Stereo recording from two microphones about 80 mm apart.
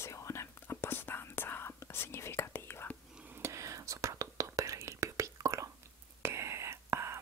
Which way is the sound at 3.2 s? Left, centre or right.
Right.